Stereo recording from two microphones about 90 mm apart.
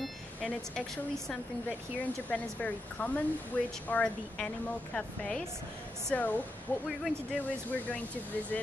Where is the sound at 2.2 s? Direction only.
15° left (ahead or behind).